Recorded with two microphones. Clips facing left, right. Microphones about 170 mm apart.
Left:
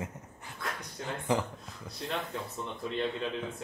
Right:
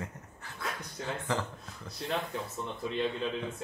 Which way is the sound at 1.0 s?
Centre (ahead or behind).